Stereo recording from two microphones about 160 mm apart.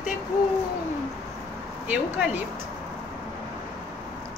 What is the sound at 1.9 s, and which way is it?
Speech, 10° right (ahead or behind).